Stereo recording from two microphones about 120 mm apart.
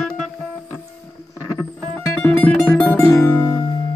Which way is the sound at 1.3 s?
25° left (ahead or behind).